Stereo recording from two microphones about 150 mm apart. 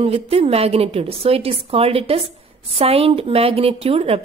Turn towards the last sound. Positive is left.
turn(degrees=-40)  # may be behind; listen again after turning